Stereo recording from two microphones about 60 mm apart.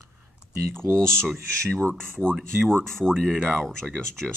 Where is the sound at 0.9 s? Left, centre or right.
Centre.